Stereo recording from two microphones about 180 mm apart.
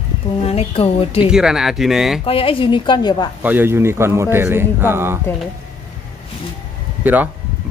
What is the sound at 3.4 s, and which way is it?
A man's voice, 10° right (ahead or behind).